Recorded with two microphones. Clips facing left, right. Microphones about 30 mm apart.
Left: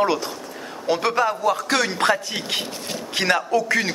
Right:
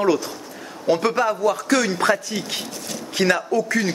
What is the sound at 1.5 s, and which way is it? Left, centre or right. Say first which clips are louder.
A man's voice: right 1 dB; left.